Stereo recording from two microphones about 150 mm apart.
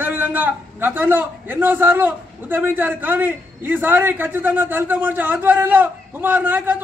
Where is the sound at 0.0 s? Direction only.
10° right (ahead or behind).